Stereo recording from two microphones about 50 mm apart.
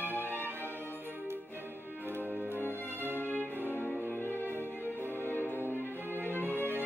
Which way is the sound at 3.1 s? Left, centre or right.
Left.